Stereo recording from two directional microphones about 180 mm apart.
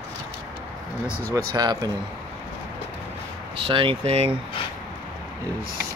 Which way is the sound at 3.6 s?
30° right (ahead or behind).